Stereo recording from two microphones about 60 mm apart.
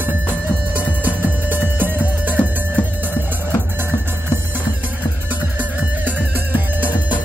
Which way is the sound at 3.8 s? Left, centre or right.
Right.